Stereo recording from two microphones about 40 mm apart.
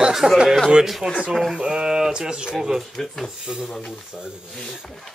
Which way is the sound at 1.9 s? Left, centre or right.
Centre.